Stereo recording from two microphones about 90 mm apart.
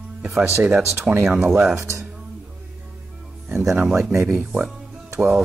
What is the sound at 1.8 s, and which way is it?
Speech, 30° right (ahead or behind).